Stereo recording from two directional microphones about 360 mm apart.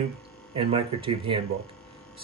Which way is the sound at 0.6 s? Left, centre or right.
Centre.